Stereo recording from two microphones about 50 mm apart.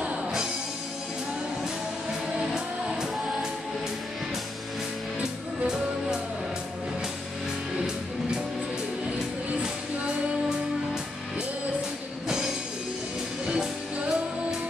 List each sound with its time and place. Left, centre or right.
2.4 s music: centre
13.5 s music: centre